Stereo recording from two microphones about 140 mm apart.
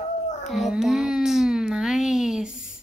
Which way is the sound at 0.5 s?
Centre (ahead or behind).